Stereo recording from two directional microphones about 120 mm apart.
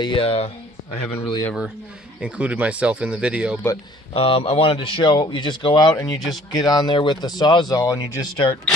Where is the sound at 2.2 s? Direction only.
10° right (ahead or behind).